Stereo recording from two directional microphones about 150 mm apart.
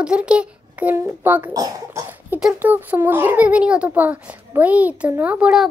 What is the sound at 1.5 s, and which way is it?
Speech, 25° right (ahead or behind).